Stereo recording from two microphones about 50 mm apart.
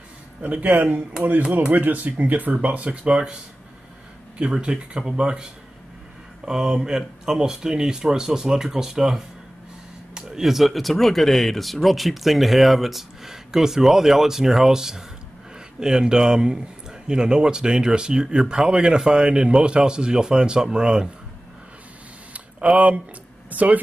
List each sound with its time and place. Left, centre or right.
0.4 s speech: right
4.4 s speech: centre
22.3 s a sound: right
23.5 s speech: right